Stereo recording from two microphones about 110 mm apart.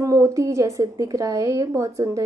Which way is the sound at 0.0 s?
30° right (ahead or behind).